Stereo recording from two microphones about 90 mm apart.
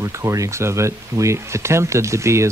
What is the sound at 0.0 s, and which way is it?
Speech, 35° right (ahead or behind).